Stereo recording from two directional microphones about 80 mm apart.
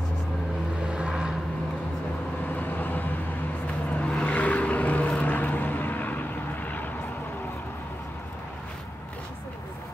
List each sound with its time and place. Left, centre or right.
0.8 s vehicle: centre
2.4 s vehicle: left